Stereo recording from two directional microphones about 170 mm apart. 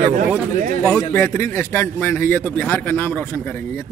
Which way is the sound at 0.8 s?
15° left (ahead or behind).